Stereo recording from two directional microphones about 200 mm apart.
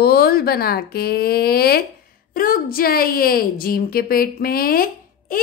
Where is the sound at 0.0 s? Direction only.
50° left (ahead or behind).